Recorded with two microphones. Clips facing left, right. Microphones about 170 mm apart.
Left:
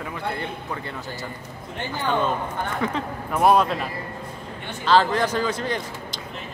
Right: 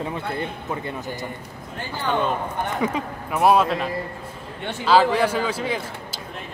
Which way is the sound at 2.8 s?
5° right (ahead or behind).